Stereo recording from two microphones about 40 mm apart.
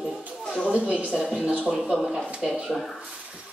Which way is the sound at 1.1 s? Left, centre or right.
Centre.